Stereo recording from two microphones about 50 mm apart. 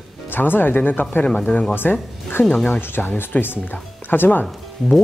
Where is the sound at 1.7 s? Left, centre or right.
Left.